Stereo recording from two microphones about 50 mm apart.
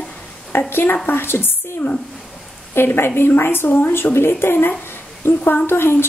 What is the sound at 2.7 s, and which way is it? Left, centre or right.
A woman's voice, left.